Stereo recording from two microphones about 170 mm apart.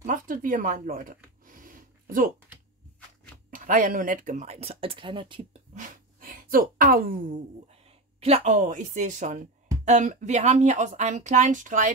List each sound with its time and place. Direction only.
0.0 s a sound: 50° right (ahead or behind)
3.4 s speech: 50° right (ahead or behind); by 5.6 s 30° right (ahead or behind)
5.8 s speech: 55° right (ahead or behind)
8.2 s a woman's voice: 40° right (ahead or behind)